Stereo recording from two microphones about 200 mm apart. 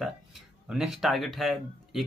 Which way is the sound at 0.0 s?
Centre (ahead or behind).